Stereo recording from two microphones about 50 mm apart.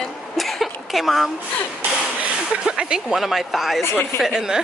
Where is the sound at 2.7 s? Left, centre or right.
Centre.